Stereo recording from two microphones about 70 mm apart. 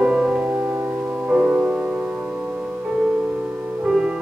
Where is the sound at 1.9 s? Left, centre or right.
Centre.